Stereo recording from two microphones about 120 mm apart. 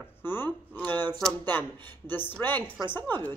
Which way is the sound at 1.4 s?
15° left (ahead or behind).